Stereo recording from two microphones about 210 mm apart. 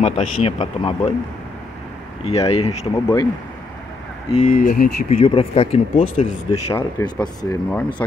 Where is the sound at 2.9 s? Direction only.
15° left (ahead or behind).